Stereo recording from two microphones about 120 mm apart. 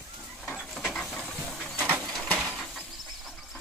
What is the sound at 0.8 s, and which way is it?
Stir, 5° left (ahead or behind).